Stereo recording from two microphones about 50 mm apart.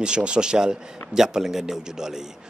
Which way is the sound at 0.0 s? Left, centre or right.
Centre.